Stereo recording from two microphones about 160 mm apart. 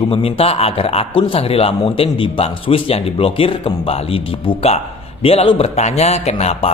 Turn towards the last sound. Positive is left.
turn(degrees=40)  # may be behind; listen again after turning